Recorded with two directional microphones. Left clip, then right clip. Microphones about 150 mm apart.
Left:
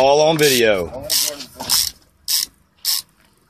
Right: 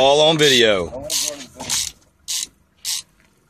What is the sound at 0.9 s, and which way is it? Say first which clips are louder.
Speech: left 3 dB; 20° left (ahead or behind).